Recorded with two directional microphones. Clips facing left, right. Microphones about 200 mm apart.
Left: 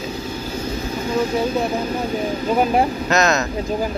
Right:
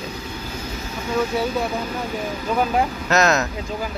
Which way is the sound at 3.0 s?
5° right (ahead or behind).